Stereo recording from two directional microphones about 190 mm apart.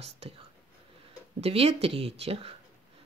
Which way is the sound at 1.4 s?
30° right (ahead or behind).